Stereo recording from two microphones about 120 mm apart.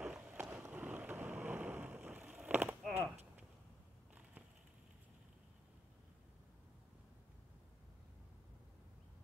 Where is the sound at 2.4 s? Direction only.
15° right (ahead or behind).